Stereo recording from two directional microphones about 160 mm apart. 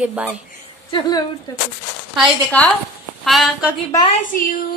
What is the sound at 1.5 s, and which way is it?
Speech, 20° left (ahead or behind).